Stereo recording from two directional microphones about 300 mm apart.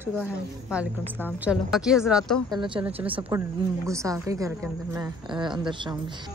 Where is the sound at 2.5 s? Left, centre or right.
Centre.